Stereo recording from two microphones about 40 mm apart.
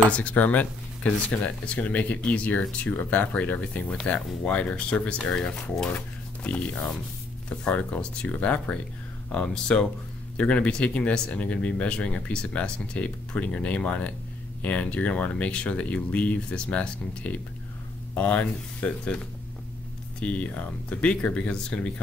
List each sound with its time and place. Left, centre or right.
0.1 s speech: left
2.9 s speech: left
5.9 s speech: left
9.5 s speech: left
10.3 s speech: left
20.2 s speech: left